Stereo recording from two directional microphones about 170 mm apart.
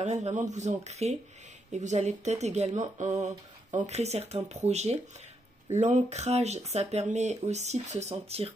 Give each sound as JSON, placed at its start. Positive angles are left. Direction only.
{"t": 0.0, "sound": "speech", "side_deg": -45}